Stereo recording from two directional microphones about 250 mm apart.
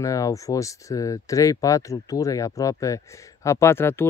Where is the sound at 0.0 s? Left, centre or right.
Centre.